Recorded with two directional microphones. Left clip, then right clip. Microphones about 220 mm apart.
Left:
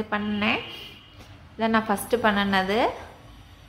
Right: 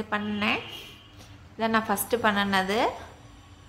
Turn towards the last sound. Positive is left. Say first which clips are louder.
# left 2 dB
turn(degrees=0)  # may be behind; listen again after turning